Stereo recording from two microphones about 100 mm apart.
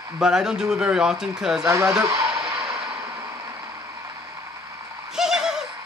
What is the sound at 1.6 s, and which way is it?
Speech, 30° right (ahead or behind).